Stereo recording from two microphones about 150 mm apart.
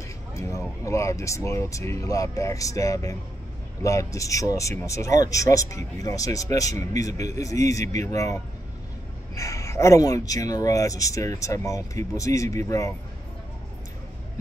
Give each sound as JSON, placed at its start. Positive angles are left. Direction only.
{"t": 0.3, "sound": "speech", "side_deg": 20}